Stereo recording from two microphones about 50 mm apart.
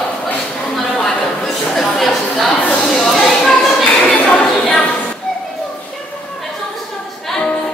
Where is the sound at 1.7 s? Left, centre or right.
Centre.